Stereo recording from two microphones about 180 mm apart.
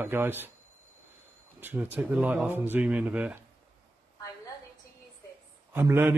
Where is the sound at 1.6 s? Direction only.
10° right (ahead or behind).